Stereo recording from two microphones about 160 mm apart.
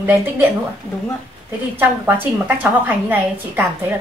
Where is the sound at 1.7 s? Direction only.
15° right (ahead or behind).